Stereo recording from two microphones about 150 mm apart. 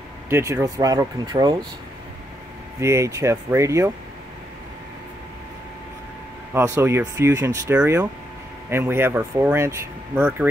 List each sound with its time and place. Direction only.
0.3 s speech: 20° right (ahead or behind)
2.8 s speech: 20° right (ahead or behind)
6.5 s speech: 20° right (ahead or behind)
7.7 s speech: 10° right (ahead or behind)